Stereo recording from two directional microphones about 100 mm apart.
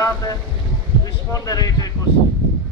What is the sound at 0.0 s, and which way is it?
Speech, 35° left (ahead or behind).